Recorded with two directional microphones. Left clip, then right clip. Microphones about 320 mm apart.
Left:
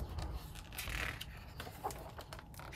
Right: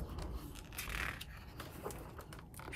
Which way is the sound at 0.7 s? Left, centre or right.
Centre.